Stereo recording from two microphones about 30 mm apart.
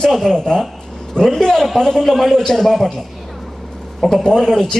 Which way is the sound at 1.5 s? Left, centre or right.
Centre.